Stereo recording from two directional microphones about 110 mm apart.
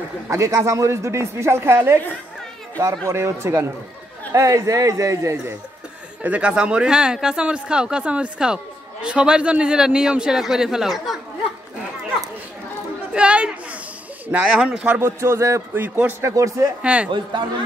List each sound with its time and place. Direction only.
0.3 s a woman's voice: 30° right (ahead or behind)
3.1 s a woman's voice: 25° right (ahead or behind)
6.2 s speech: 10° right (ahead or behind)
13.1 s speech: 10° right (ahead or behind)
15.0 s a woman's voice: 25° right (ahead or behind)
16.8 s speech: 10° right (ahead or behind)
17.1 s speech: 45° right (ahead or behind)